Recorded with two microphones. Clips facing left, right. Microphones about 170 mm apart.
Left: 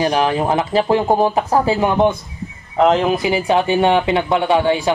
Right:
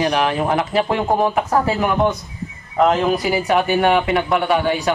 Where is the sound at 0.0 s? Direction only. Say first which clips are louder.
Left 2 dB; 30° left (ahead or behind).